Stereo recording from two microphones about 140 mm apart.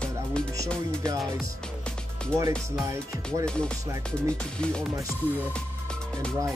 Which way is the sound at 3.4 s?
5° left (ahead or behind).